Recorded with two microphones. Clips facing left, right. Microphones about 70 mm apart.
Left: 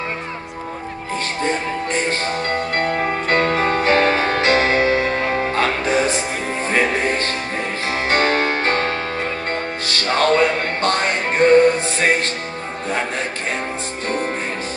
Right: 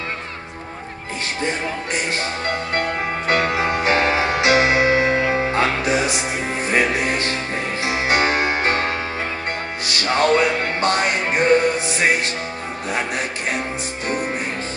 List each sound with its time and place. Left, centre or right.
3.0 s music: centre
14.0 s music: centre